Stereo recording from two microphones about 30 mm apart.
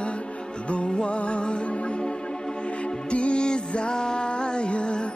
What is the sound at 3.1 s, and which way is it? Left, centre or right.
Music, left.